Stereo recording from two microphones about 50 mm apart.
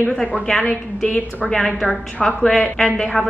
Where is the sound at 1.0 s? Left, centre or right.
Left.